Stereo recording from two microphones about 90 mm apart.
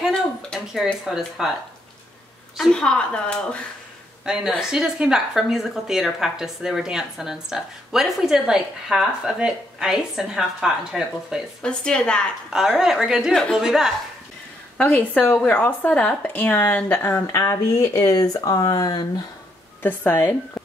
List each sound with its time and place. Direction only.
0.0 s a sound: centre (ahead or behind)
1.0 s speech: 5° right (ahead or behind)
2.5 s speech: 5° left (ahead or behind)
4.3 s speech: 5° right (ahead or behind)
11.6 s speech: 10° left (ahead or behind)
12.4 s speech: 5° right (ahead or behind)
13.3 s speech: 5° left (ahead or behind)
13.6 s speech: 5° right (ahead or behind)
14.8 s speech: 15° left (ahead or behind); by 19.2 s 50° left (ahead or behind)
19.8 s speech: 20° left (ahead or behind)